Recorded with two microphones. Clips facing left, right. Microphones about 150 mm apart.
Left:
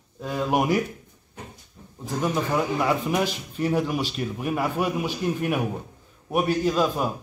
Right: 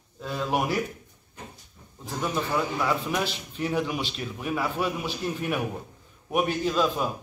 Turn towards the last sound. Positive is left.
turn(degrees=10)  # may be behind; listen again after turning